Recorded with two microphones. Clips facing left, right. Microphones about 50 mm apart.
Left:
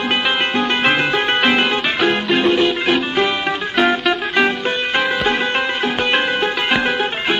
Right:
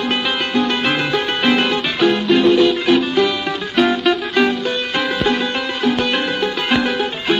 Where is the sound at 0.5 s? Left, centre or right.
Left.